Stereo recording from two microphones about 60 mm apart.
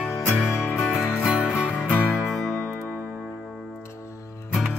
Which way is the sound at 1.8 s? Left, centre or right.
Left.